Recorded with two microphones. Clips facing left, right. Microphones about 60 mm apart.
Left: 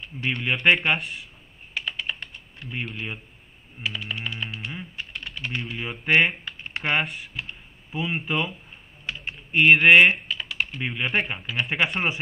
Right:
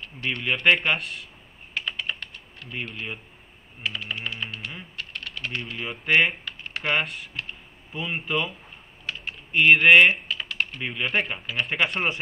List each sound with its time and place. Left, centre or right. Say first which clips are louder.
0.2 s speech: left 1 dB; centre
1.7 s typing: even; centre
2.7 s speech: left 1 dB; centre
4.5 s speech: left 2 dB; centre
6.4 s typing: even; left
7.1 s speech: even; centre
9.0 s typing: even; centre
10.2 s speech: even; centre